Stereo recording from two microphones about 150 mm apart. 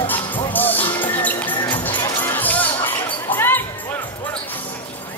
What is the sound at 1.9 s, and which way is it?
Music, 30° left (ahead or behind).